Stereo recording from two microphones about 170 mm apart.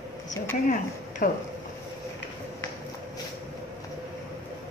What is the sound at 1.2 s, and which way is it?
Speech, 55° left (ahead or behind).